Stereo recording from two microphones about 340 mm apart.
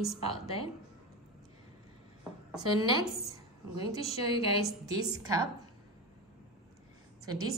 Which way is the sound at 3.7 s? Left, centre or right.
Centre.